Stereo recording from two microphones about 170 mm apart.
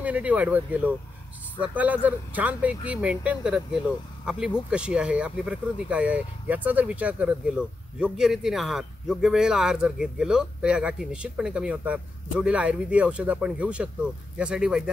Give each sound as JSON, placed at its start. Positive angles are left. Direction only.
{"t": 0.0, "sound": "speech", "side_deg": -10}